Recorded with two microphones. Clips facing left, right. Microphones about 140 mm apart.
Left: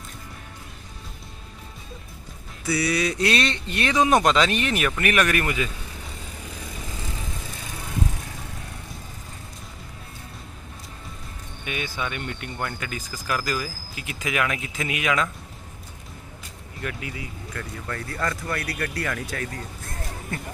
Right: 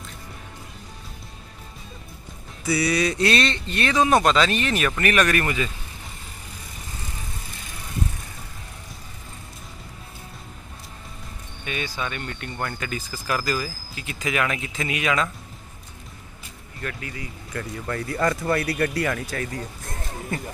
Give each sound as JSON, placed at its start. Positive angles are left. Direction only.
{"t": 2.7, "sound": "speech", "side_deg": 5}
{"t": 11.6, "sound": "speech", "side_deg": 10}
{"t": 16.8, "sound": "speech", "side_deg": 10}
{"t": 17.6, "sound": "speech", "side_deg": -15}
{"t": 19.1, "sound": "speech", "side_deg": -5}